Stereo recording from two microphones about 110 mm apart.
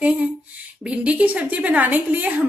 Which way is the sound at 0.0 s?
10° right (ahead or behind).